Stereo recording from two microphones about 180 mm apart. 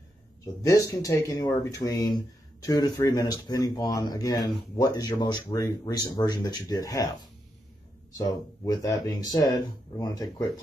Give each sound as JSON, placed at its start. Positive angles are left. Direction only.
{"t": 0.7, "sound": "speech", "side_deg": 20}
{"t": 8.2, "sound": "speech", "side_deg": 20}